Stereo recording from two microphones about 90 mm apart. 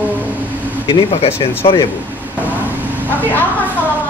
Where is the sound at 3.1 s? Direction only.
20° left (ahead or behind).